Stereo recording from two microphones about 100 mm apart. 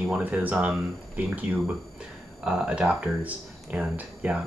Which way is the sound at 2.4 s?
5° right (ahead or behind).